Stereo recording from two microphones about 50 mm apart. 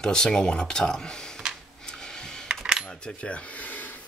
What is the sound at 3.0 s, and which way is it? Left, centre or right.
Rub, left.